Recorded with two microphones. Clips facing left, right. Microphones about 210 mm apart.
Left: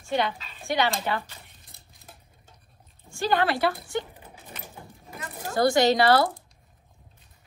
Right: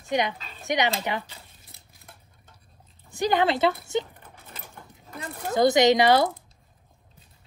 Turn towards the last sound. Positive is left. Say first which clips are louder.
# right 1 dB
turn(degrees=-20)  # may be behind; listen again after turning